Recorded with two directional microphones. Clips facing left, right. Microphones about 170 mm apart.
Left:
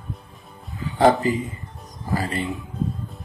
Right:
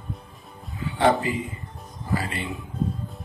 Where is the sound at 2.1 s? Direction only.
40° left (ahead or behind).